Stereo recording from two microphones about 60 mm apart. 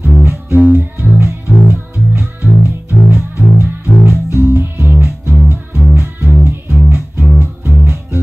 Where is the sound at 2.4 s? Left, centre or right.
Right.